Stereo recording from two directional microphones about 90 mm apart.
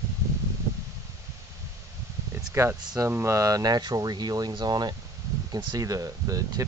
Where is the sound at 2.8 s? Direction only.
40° right (ahead or behind).